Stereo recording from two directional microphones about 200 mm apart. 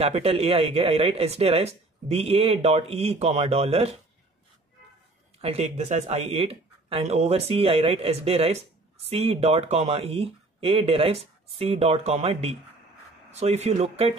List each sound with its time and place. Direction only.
0.0 s speech: 30° right (ahead or behind)
5.4 s speech: 30° right (ahead or behind)